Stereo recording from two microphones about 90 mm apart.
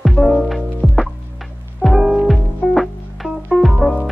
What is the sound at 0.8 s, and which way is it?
Music, 10° left (ahead or behind).